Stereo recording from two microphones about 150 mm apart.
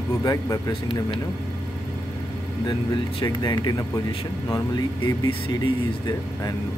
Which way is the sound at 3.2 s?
30° left (ahead or behind).